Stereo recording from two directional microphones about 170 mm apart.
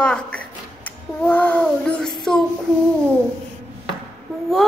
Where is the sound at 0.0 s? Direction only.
5° left (ahead or behind).